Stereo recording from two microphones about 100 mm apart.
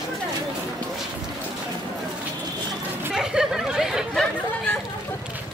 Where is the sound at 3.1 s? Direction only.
5° right (ahead or behind).